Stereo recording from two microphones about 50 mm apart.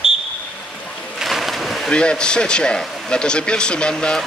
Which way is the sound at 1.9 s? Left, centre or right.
Centre.